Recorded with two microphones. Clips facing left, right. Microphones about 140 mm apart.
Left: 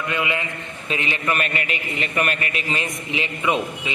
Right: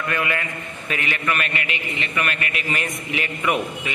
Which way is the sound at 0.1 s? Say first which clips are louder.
Even; 20° left (ahead or behind).